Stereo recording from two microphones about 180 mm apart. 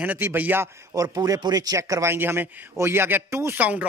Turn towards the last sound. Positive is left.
turn(degrees=-10)  # may be behind; listen again after turning